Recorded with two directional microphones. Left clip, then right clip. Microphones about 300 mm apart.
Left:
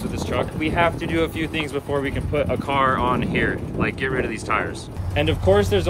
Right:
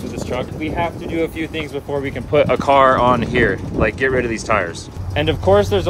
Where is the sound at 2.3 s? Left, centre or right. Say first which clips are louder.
Right 9 dB; right.